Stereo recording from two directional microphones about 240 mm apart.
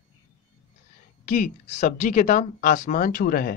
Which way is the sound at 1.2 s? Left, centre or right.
Left.